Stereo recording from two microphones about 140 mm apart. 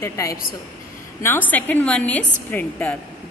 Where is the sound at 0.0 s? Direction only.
20° left (ahead or behind).